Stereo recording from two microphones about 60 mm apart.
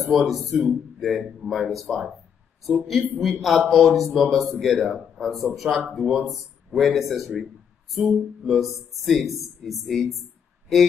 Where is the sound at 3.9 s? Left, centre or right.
Centre.